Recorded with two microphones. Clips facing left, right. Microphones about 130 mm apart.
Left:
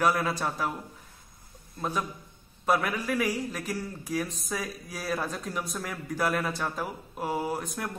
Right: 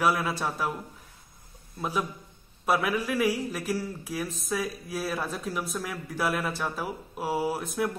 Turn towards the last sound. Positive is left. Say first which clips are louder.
# right 3 dB
turn(degrees=-5)  # may be behind; listen again after turning